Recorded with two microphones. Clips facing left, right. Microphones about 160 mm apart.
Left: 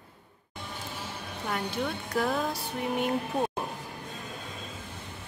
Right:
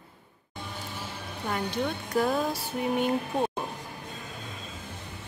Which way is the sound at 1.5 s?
Centre (ahead or behind).